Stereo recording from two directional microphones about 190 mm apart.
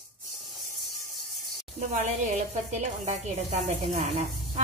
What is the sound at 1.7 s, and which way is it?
A woman's voice, 40° right (ahead or behind).